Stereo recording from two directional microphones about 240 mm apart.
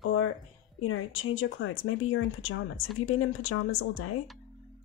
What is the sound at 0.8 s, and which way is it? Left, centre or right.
Speech, left.